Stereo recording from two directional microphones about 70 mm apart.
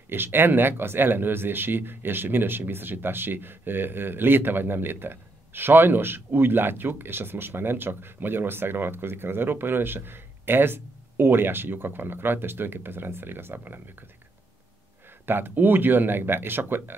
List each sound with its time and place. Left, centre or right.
0.1 s speech: right
15.2 s speech: right